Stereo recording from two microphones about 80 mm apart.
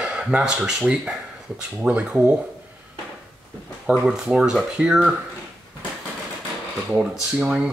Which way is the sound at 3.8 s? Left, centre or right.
Centre.